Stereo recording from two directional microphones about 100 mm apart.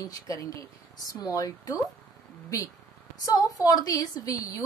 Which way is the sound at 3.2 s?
40° left (ahead or behind).